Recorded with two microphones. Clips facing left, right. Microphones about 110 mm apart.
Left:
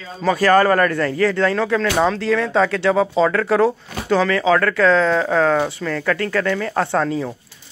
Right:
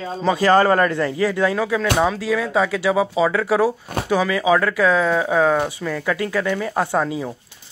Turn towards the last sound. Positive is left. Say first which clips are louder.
# left 1 dB
turn(degrees=-15)  # may be behind; listen again after turning